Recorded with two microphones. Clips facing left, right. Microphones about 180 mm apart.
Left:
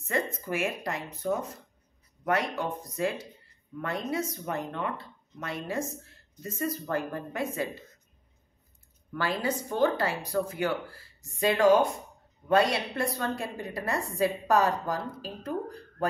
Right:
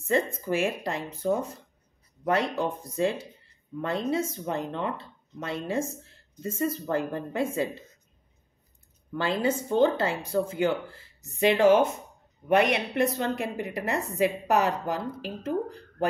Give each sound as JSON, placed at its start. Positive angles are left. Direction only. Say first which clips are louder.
{"t": 0.0, "sound": "speech", "louder": "right 5 dB", "side_deg": -30}
{"t": 9.1, "sound": "speech", "louder": "right 3 dB", "side_deg": -25}